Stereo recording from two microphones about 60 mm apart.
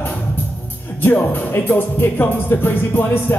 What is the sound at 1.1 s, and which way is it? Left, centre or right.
Speech, left.